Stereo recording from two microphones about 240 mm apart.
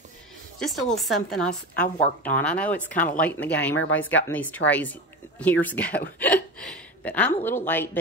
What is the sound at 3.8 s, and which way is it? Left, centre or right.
Speech, left.